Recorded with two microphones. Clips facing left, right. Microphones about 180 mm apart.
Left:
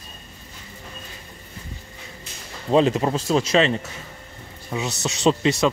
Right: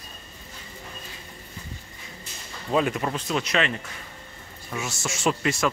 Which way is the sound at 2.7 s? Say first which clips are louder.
Left 6 dB; 25° left (ahead or behind).